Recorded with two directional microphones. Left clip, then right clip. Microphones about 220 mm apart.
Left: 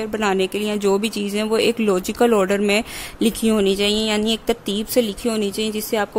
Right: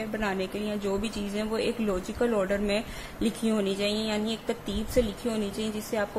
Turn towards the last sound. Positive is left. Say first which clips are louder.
# left 9 dB
turn(degrees=45)  # may be behind; listen again after turning